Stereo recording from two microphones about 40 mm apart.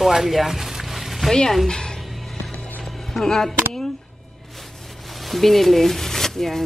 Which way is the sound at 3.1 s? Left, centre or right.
Centre.